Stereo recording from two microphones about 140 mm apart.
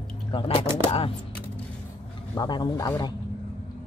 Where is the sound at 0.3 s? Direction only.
40° left (ahead or behind).